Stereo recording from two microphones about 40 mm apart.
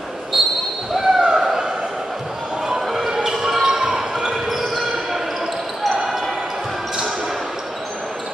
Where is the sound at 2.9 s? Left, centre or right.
Centre.